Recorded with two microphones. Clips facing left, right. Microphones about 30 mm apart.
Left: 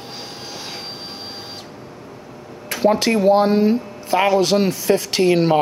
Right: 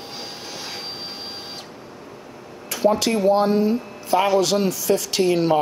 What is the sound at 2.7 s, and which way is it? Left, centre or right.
Speech, left.